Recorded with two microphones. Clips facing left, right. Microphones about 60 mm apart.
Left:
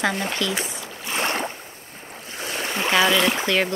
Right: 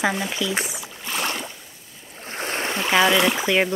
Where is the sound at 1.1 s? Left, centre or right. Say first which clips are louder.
Left 3 dB; left.